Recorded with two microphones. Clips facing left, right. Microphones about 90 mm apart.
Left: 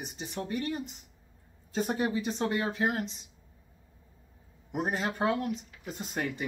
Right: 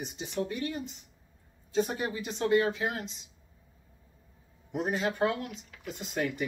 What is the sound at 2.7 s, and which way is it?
Speech, 40° left (ahead or behind).